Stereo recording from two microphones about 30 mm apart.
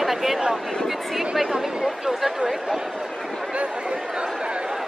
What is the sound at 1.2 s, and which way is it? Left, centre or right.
Speech, centre.